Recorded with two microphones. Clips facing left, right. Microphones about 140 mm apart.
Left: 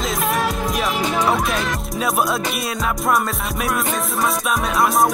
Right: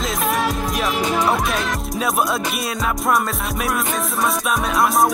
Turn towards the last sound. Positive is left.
turn(degrees=0)  # may be behind; listen again after turning